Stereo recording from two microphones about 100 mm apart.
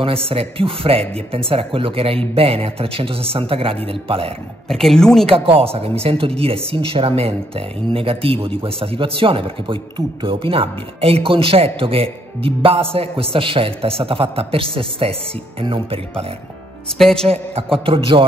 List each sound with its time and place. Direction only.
0.0 s speech: 70° right (ahead or behind)
4.6 s speech: 5° left (ahead or behind)
5.2 s speech: 70° right (ahead or behind)
17.0 s speech: 5° left (ahead or behind)
17.3 s a man's voice: 75° right (ahead or behind)